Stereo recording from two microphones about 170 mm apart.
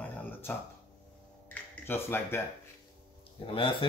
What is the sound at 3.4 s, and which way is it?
Speech, 30° left (ahead or behind).